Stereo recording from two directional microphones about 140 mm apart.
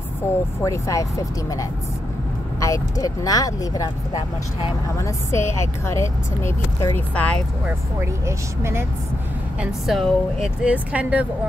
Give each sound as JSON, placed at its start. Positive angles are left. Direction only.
{"t": 0.6, "sound": "speech", "side_deg": 20}
{"t": 4.9, "sound": "speech", "side_deg": 20}
{"t": 8.3, "sound": "speech", "side_deg": -20}
{"t": 9.6, "sound": "speech", "side_deg": 0}